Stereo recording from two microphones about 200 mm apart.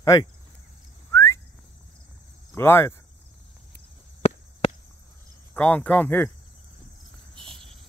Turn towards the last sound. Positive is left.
turn(degrees=-25)  # may be behind; listen again after turning